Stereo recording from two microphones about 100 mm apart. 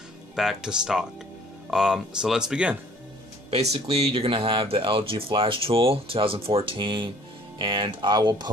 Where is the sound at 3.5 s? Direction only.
90° right.